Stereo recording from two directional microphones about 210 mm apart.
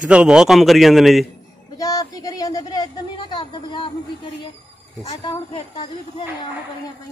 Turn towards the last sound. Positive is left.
turn(degrees=25)  # may be behind; listen again after turning